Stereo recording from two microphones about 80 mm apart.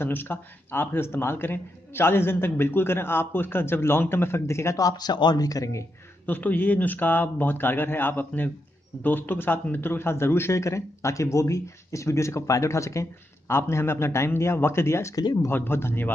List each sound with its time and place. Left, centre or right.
0.0 s a man's voice: left
4.8 s speech: left
6.2 s a man's voice: left